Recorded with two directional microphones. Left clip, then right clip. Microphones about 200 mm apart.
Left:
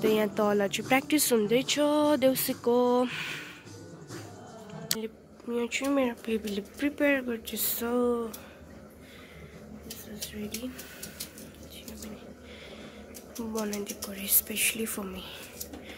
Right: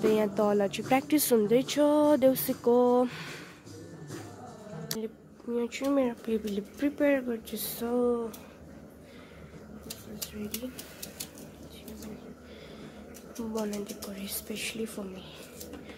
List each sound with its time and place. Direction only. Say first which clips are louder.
0.0 s speech: even; 5° right (ahead or behind)
4.8 s speech: left 3 dB; 5° right (ahead or behind)
13.7 s speech: left 2 dB; centre (ahead or behind)